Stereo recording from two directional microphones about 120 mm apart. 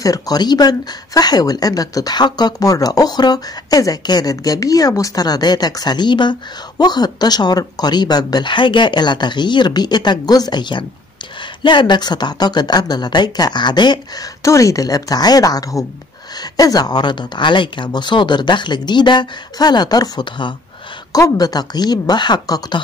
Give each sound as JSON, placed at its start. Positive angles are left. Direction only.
{"t": 0.0, "sound": "speech", "side_deg": 30}